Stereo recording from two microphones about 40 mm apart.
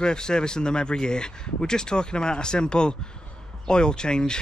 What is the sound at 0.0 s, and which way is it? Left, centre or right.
Speech, centre.